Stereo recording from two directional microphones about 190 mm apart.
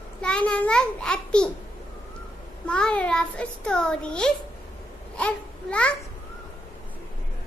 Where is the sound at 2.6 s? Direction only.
5° left (ahead or behind).